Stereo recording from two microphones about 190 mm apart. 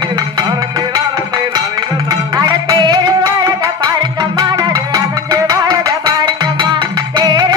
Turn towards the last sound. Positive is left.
turn(degrees=-20)  # may be behind; listen again after turning